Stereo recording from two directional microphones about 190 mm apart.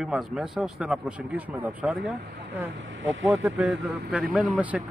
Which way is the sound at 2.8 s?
80° right.